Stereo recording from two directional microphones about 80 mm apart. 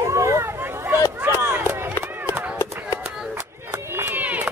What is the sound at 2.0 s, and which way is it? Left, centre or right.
Run, right.